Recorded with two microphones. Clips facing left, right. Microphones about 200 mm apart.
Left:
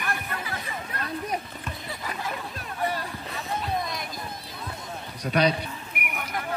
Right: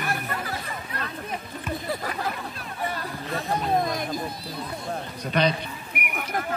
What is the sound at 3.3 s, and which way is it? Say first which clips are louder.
Hubbub: right 6 dB; 50° right (ahead or behind).